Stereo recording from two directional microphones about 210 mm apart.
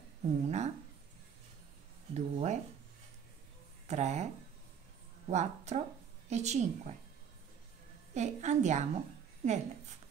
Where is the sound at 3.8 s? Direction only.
35° right (ahead or behind).